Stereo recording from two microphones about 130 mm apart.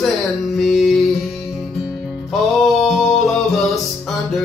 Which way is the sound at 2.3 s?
Centre (ahead or behind).